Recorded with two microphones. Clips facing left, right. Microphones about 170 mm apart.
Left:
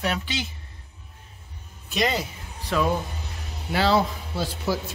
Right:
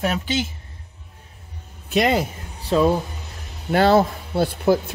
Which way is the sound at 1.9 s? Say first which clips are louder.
Right 6 dB; 55° right (ahead or behind).